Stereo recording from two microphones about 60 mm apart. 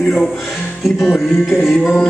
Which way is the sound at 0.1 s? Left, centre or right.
Centre.